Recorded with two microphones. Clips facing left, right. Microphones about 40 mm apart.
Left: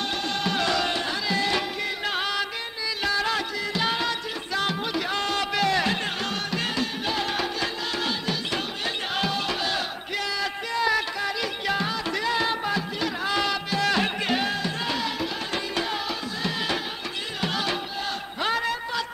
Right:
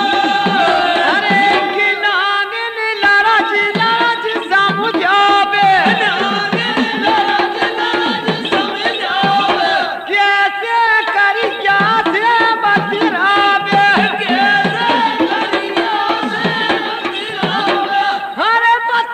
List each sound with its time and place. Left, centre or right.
0.0 s music: right
9.2 s battle cry: right
17.6 s a sound: right